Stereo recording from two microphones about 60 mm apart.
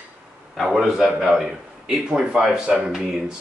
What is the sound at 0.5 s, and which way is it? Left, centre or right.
Speech, centre.